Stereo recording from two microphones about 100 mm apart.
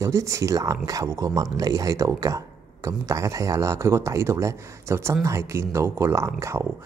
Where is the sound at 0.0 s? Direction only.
30° right (ahead or behind).